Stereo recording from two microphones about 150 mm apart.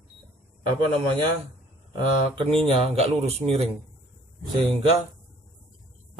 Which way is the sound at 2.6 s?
40° right (ahead or behind).